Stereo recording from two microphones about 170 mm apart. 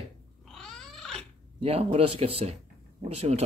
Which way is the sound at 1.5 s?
35° right (ahead or behind).